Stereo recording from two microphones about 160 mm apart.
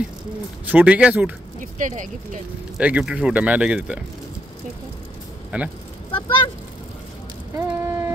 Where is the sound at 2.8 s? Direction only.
5° right (ahead or behind).